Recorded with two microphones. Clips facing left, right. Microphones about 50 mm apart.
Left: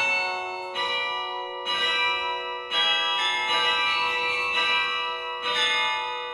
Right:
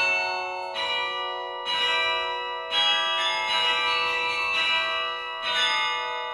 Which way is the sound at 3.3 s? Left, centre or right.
Centre.